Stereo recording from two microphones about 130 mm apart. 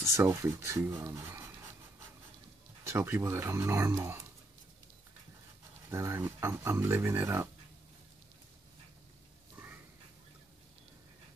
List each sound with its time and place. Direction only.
0.1 s speech: 20° right (ahead or behind)
2.8 s speech: 20° right (ahead or behind)
5.9 s speech: 20° right (ahead or behind)